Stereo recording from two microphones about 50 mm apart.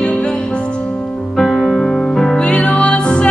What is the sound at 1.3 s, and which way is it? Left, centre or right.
Music, centre.